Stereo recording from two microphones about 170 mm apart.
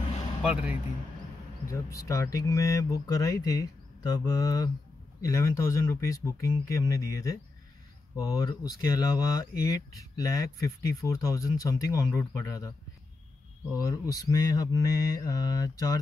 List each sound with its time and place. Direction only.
0.4 s speech: 10° right (ahead or behind)
1.7 s speech: 20° left (ahead or behind)
13.7 s speech: 20° left (ahead or behind)